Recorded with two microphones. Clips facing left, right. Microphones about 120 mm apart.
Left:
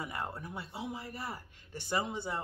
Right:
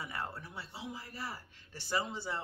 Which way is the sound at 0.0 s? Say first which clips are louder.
Left 2 dB; 15° left (ahead or behind).